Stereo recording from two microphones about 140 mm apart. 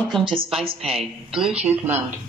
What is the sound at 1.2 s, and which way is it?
Speech, 5° right (ahead or behind).